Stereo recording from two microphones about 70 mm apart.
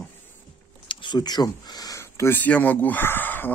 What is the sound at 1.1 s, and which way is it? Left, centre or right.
Speech, left.